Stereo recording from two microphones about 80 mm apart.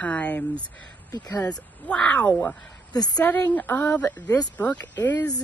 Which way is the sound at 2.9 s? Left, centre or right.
Left.